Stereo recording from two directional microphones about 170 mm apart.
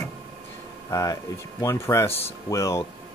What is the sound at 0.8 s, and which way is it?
Speech, 20° left (ahead or behind).